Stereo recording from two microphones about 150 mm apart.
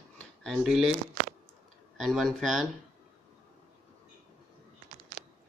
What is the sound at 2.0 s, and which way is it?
Speech, centre (ahead or behind).